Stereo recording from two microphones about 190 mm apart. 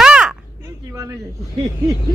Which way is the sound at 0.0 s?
5° right (ahead or behind).